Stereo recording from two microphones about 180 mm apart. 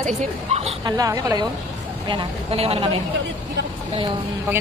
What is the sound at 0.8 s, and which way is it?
A woman's voice, 20° right (ahead or behind).